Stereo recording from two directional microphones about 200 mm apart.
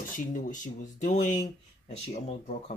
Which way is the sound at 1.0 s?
35° left (ahead or behind).